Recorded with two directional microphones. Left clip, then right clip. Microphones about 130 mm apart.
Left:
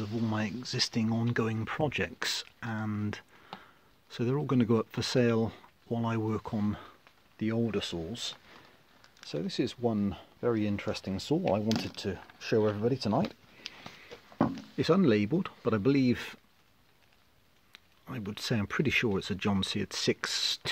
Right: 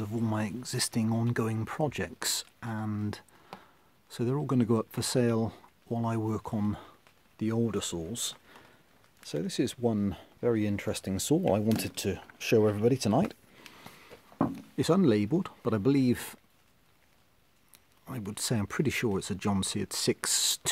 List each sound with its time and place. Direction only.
0.2 s speech: 20° right (ahead or behind)
1.5 s speech: 5° right (ahead or behind)
4.9 s speech: 20° right (ahead or behind)
5.9 s speech: 5° right (ahead or behind)
6.5 s speech: 20° right (ahead or behind); by 11.4 s 45° right (ahead or behind)
11.8 s speech: 60° right (ahead or behind)
14.8 s speech: 25° right (ahead or behind)
18.0 s speech: 10° right (ahead or behind); by 20.6 s 30° right (ahead or behind)